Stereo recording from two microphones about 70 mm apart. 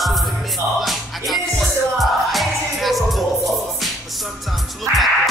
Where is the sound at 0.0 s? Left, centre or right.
Centre.